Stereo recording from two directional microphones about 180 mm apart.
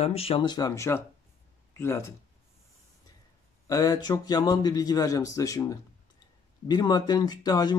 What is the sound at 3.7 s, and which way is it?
Speech, 20° left (ahead or behind).